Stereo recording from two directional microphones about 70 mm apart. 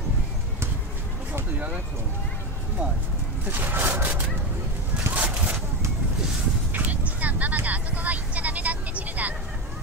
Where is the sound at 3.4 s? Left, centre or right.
Right.